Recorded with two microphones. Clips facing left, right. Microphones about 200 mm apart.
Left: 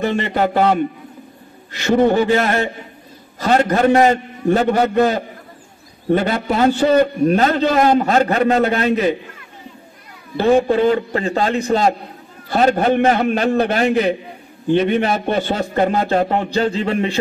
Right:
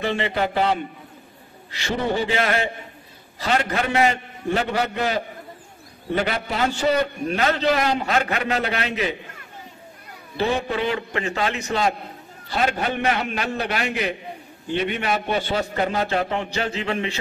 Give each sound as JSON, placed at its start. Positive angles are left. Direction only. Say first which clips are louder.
{"t": 0.0, "sound": "a man's voice", "louder": "left 5 dB", "side_deg": 45}
{"t": 10.4, "sound": "a man's voice", "louder": "left 9 dB", "side_deg": 40}